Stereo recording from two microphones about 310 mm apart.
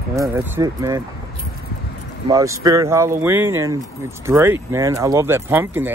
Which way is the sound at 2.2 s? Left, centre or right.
Centre.